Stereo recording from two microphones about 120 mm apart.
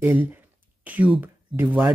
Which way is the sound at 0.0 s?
15° right (ahead or behind).